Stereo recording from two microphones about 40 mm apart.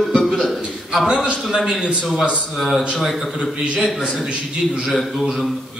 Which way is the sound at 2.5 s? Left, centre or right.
Centre.